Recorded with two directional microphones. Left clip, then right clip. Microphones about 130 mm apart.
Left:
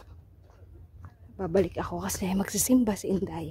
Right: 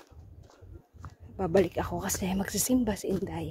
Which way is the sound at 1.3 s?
5° left (ahead or behind).